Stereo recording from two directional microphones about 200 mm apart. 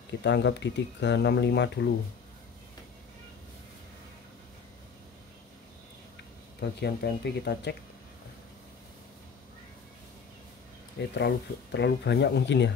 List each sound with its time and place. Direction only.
0.2 s speech: 60° left (ahead or behind)
6.6 s speech: 55° left (ahead or behind)
11.1 s speech: 55° left (ahead or behind)